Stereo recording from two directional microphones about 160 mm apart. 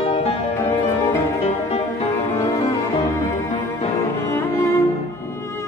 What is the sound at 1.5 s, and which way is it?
Music, 40° left (ahead or behind).